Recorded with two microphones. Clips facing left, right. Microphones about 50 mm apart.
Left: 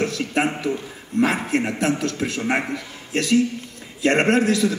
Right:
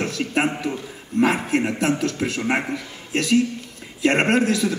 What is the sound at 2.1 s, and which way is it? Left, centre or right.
Speech, right.